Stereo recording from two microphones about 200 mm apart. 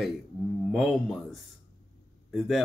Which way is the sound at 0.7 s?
Centre (ahead or behind).